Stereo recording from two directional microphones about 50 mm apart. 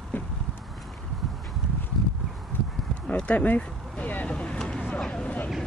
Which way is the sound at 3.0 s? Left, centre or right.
Left.